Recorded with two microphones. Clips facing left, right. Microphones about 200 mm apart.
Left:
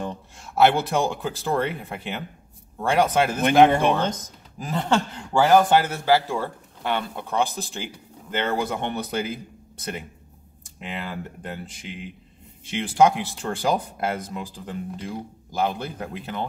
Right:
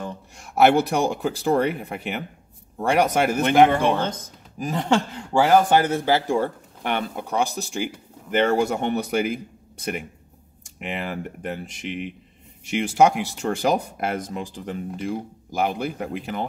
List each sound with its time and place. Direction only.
0.4 s speech: 15° right (ahead or behind)
4.6 s speech: 10° right (ahead or behind)